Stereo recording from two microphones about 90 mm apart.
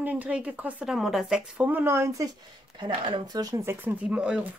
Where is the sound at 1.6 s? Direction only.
20° right (ahead or behind).